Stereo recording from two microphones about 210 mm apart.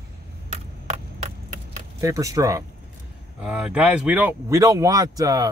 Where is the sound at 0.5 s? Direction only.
30° right (ahead or behind).